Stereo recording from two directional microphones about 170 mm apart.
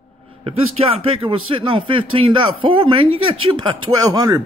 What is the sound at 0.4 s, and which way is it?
Speech, 35° right (ahead or behind).